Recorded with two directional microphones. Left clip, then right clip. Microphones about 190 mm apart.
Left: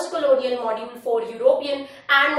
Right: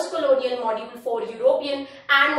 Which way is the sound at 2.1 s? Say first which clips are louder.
Even; 20° left (ahead or behind).